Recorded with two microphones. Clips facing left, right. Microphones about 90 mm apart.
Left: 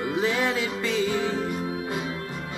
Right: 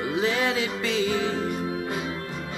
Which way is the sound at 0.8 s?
90° right.